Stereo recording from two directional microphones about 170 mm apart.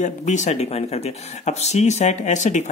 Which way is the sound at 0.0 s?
45° left (ahead or behind).